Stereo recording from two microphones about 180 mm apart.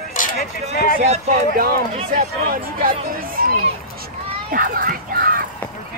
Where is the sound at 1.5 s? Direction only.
55° right (ahead or behind).